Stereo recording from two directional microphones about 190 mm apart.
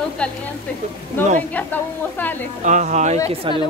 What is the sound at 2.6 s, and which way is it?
Speech, 40° right (ahead or behind).